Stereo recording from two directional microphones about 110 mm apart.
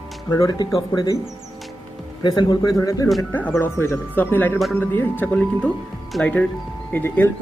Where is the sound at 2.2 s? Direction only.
40° left (ahead or behind).